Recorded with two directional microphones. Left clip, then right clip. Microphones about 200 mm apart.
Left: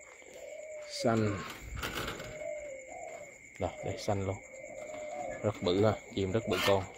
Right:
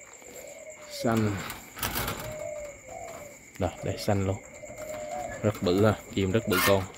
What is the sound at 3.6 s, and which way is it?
Speech, 15° right (ahead or behind).